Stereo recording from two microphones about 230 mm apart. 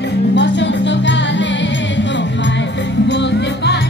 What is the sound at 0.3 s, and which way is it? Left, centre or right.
Music, left.